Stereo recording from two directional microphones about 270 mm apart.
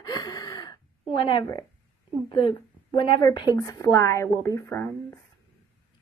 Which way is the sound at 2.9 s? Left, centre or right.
Centre.